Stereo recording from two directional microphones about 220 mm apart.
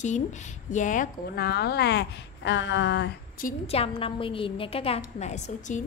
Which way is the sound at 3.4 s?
25° left (ahead or behind).